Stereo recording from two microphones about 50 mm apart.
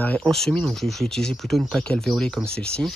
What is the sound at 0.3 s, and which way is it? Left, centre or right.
Speech, centre.